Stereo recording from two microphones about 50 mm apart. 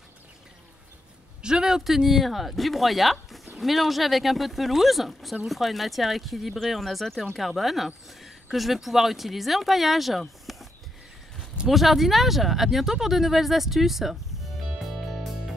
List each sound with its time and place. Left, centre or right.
1.4 s speech: centre
1.9 s speech: centre
14.8 s music: centre